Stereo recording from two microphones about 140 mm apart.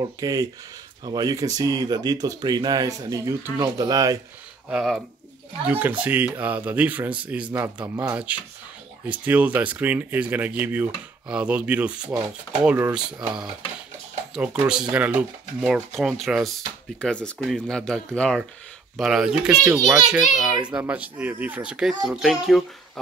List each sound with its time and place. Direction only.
0.0 s speech: 25° right (ahead or behind)
4.6 s speech: 5° right (ahead or behind)
7.8 s speech: 30° right (ahead or behind)
8.1 s speech: 10° right (ahead or behind)
14.3 s speech: 5° right (ahead or behind)